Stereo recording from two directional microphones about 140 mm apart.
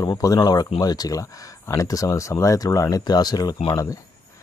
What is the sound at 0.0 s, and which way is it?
Speech, 30° left (ahead or behind).